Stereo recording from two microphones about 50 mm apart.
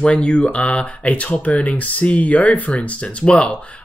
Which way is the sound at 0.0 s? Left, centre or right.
Left.